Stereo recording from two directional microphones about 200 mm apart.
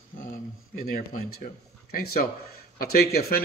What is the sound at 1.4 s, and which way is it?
A man's voice, 50° left (ahead or behind).